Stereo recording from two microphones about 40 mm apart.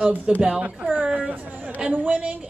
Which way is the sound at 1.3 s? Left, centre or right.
Right.